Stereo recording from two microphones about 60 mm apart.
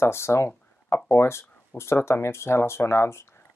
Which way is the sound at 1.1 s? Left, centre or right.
Left.